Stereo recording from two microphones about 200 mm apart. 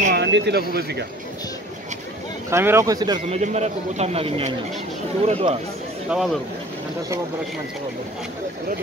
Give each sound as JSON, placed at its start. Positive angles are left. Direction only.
{"t": 0.1, "sound": "speech", "side_deg": -60}
{"t": 2.5, "sound": "speech", "side_deg": -15}
{"t": 3.3, "sound": "speech", "side_deg": -35}
{"t": 6.0, "sound": "speech", "side_deg": 0}